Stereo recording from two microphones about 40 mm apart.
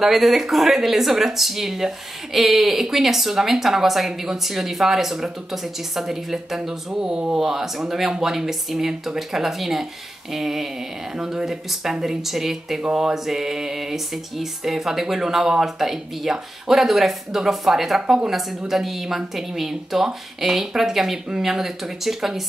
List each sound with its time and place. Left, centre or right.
0.0 s speech: centre
6.9 s speech: right
7.3 s speech: centre